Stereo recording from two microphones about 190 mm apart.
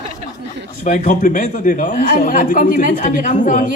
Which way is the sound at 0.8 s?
40° left (ahead or behind).